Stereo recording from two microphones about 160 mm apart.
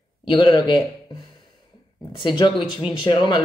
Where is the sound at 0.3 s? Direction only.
30° left (ahead or behind).